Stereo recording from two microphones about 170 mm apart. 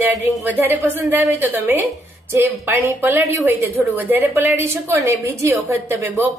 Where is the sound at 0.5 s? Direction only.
10° right (ahead or behind).